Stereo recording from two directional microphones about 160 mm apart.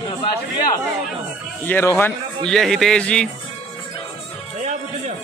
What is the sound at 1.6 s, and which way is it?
Speech, 15° left (ahead or behind).